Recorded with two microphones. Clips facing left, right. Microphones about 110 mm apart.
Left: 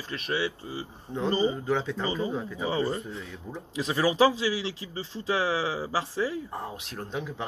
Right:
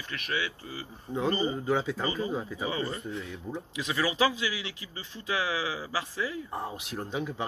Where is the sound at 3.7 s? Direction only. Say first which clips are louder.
Left 5 dB; 35° left (ahead or behind).